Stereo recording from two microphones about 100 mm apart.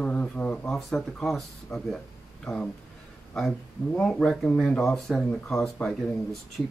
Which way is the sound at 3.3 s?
5° left (ahead or behind).